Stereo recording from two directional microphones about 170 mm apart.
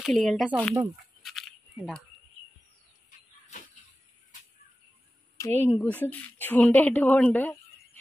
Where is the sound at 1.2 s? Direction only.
Centre (ahead or behind).